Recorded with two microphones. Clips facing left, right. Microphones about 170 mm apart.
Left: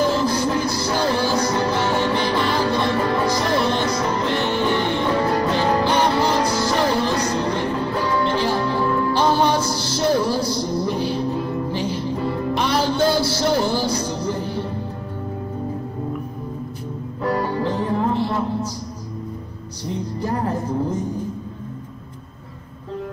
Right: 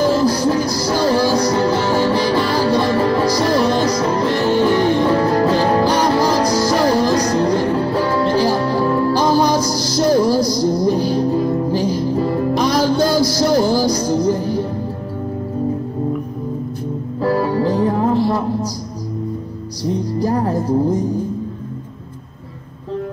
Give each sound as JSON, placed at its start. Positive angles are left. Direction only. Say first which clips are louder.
{"t": 0.0, "sound": "music", "louder": "right 5 dB", "side_deg": -35}
{"t": 17.2, "sound": "music", "louder": "right 5 dB", "side_deg": -30}
{"t": 20.2, "sound": "music", "louder": "right 4 dB", "side_deg": -35}